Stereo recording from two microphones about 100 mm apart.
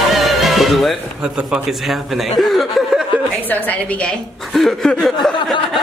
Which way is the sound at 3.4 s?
15° left (ahead or behind).